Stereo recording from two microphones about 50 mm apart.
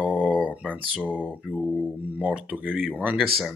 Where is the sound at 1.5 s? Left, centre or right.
Right.